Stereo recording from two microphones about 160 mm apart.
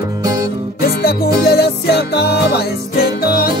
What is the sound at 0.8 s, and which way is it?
Music, 80° left.